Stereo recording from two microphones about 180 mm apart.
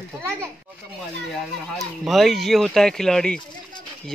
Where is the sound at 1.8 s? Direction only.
Centre (ahead or behind).